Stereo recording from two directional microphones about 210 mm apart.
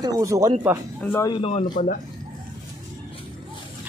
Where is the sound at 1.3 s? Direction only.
25° left (ahead or behind).